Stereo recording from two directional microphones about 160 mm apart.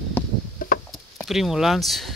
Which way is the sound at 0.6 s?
60° left (ahead or behind).